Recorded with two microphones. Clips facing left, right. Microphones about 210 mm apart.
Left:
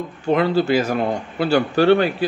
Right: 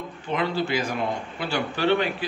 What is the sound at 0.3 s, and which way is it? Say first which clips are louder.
A man's voice: left 8 dB; 40° left (ahead or behind).